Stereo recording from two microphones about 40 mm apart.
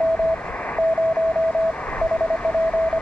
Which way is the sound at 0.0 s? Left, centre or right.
Left.